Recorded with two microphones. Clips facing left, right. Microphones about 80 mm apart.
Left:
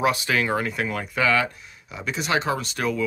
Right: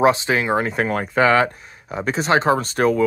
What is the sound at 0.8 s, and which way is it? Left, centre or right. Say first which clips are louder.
Speech: right 8 dB; right.